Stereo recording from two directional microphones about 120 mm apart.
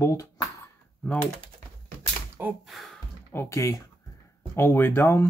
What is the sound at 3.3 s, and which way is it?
Speech, 20° left (ahead or behind).